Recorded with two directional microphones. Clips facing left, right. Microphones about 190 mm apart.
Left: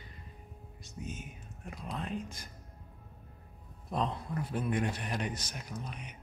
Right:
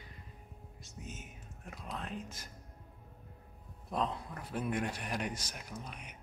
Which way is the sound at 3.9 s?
5° right (ahead or behind).